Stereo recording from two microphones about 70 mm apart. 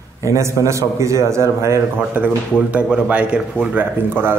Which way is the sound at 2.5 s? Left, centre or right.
Centre.